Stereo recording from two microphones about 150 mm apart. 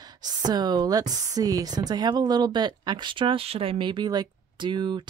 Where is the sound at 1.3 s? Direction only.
25° right (ahead or behind).